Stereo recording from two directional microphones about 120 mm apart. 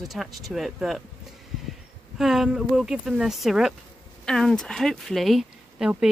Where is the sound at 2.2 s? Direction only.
5° right (ahead or behind).